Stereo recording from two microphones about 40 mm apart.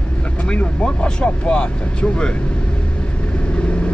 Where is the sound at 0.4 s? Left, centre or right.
Left.